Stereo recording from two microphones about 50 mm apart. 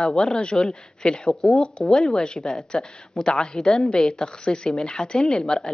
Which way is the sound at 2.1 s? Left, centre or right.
Centre.